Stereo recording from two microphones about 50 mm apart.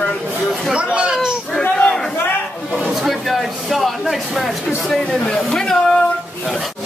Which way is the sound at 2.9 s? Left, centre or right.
Centre.